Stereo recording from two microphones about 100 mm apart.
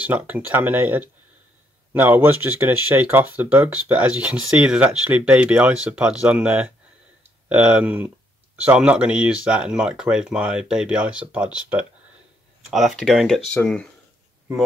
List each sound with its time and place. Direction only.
0.0 s speech: 15° right (ahead or behind)
12.6 s speech: centre (ahead or behind)